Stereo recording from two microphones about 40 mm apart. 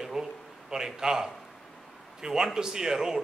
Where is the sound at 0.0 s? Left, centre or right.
Centre.